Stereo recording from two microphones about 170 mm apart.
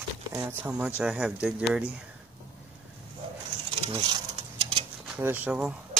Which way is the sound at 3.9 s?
30° right (ahead or behind).